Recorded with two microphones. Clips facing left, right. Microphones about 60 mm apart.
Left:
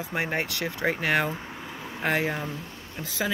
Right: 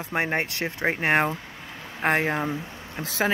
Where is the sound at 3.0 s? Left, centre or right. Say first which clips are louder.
Right 4 dB; right.